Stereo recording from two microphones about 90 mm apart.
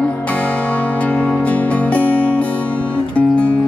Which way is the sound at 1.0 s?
15° left (ahead or behind).